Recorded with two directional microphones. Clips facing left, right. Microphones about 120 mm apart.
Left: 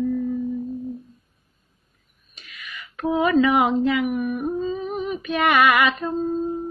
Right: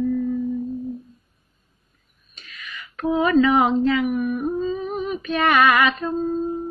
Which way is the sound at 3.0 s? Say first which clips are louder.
Right 1 dB; 15° left (ahead or behind).